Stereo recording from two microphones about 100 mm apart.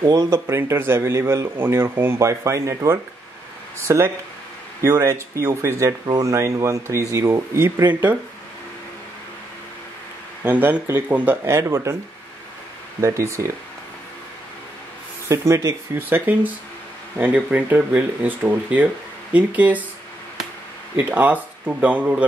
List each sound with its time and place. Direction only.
0.0 s speech: 35° right (ahead or behind)
10.4 s speech: 15° right (ahead or behind)
13.0 s speech: 30° right (ahead or behind)
15.2 s speech: 30° right (ahead or behind)
20.9 s speech: 15° right (ahead or behind)